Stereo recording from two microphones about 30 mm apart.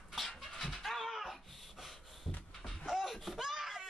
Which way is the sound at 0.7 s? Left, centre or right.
Centre.